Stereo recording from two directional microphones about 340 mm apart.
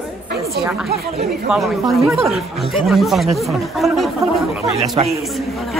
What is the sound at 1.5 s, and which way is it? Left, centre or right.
A woman's voice, centre.